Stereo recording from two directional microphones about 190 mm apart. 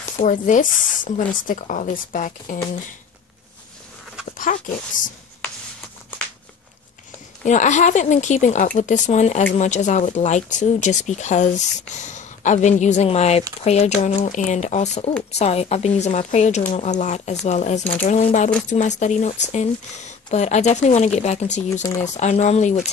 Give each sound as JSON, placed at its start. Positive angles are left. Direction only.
{"t": 0.2, "sound": "speech", "side_deg": 40}
{"t": 4.5, "sound": "speech", "side_deg": 40}
{"t": 7.4, "sound": "speech", "side_deg": 40}